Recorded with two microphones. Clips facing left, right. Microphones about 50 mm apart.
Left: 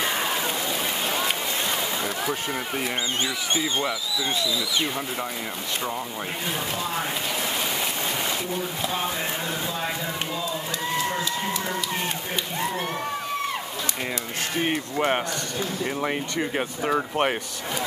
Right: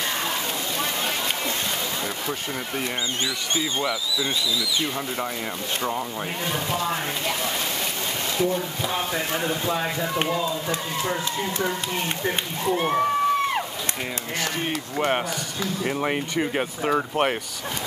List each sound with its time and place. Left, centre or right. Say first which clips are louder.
2.2 s speech: left 2 dB; centre
3.5 s speech: right 1 dB; left
10.1 s speech: right 5 dB; right
15.0 s speech: right 1 dB; centre
15.8 s speech: right 3 dB; centre